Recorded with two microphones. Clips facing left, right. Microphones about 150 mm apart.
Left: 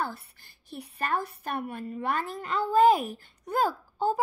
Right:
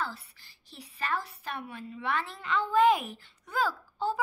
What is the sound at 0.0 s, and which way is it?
A woman's voice, 55° left (ahead or behind).